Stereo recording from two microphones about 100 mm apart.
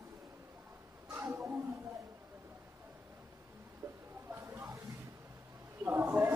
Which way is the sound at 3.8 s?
25° right (ahead or behind).